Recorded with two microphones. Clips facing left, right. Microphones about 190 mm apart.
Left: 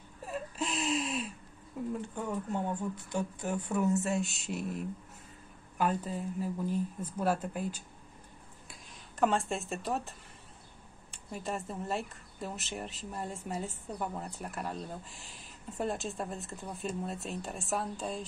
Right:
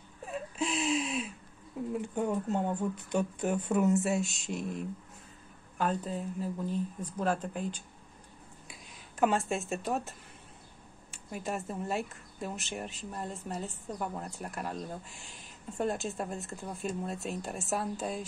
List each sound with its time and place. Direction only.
0.2 s whimper: centre (ahead or behind)
2.1 s speech: 20° right (ahead or behind)
4.0 s speech: centre (ahead or behind)